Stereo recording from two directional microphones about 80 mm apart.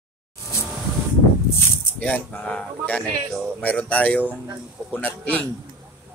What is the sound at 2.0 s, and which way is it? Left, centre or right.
Speech, centre.